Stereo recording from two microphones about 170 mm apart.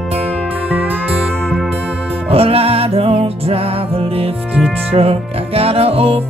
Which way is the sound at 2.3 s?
35° right (ahead or behind).